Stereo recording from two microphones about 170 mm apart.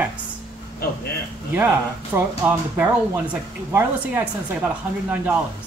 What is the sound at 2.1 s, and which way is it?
Speech, 10° right (ahead or behind).